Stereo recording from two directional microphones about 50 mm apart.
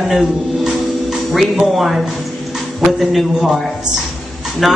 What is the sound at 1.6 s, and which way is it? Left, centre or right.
Speech, centre.